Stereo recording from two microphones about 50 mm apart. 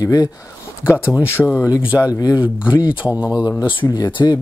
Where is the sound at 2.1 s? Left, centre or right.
Right.